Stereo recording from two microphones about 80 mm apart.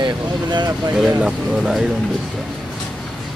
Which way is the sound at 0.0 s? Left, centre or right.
Right.